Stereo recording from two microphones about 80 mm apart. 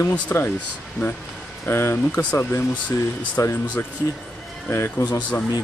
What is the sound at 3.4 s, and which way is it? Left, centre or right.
Speech, left.